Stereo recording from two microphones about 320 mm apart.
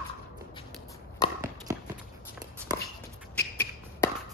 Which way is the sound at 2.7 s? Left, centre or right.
Centre.